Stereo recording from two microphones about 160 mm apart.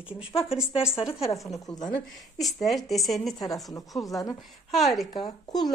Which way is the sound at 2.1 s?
Centre (ahead or behind).